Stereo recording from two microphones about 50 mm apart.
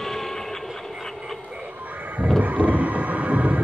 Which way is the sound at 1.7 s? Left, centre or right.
Right.